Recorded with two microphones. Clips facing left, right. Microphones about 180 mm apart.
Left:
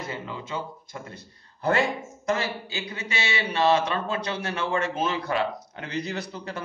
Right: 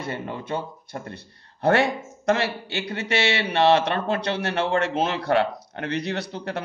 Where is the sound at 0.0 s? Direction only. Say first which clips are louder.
Right 4 dB; 65° right (ahead or behind).